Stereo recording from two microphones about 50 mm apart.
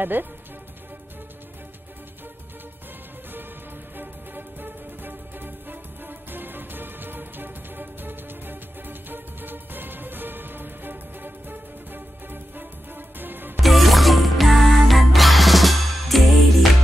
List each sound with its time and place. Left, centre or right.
0.0 s speech: right
3.9 s music: right
13.6 s music: centre